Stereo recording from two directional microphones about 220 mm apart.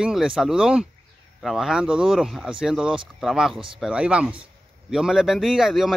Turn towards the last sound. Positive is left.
turn(degrees=0)  # may be behind; listen again after turning